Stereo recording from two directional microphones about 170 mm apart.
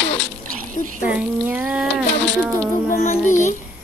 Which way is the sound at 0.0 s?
90° left.